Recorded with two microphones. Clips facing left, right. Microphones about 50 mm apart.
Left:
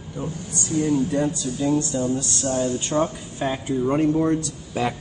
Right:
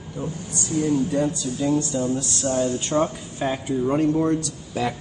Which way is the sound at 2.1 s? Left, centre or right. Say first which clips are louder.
Even; centre.